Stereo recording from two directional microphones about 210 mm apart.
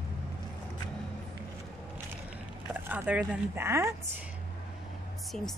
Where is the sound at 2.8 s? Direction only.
10° right (ahead or behind).